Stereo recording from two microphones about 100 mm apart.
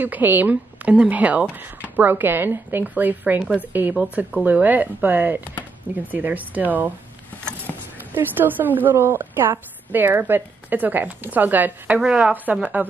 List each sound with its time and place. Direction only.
0.0 s speech: 20° right (ahead or behind)
7.7 s a sound: 20° left (ahead or behind)
8.1 s a woman's voice: 20° right (ahead or behind)